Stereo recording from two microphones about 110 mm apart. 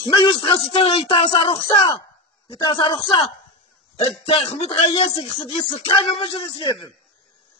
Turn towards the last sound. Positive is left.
turn(degrees=50)  # may be behind; listen again after turning